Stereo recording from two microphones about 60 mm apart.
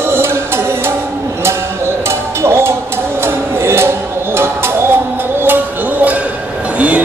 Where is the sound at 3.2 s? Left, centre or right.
Right.